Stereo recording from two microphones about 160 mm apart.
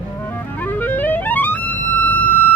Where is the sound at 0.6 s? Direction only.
10° left (ahead or behind).